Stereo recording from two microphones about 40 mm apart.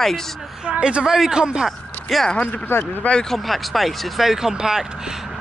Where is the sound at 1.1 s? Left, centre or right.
Centre.